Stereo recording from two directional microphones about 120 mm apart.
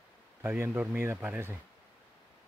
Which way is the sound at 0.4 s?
15° right (ahead or behind).